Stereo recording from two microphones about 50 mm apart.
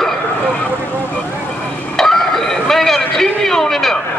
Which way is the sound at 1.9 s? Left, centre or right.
Centre.